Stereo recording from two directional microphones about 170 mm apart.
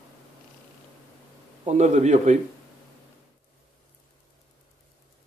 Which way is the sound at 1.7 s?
45° right (ahead or behind).